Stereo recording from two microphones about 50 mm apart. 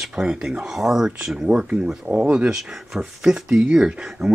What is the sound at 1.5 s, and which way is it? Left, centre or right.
Speech, right.